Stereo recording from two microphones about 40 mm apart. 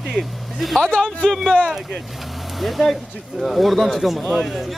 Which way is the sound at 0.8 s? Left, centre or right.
Centre.